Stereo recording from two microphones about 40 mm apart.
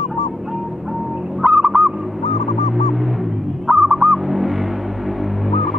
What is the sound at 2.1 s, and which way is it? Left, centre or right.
Bird, centre.